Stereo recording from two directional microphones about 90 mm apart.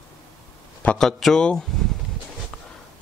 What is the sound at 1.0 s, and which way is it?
Speech, 5° left (ahead or behind).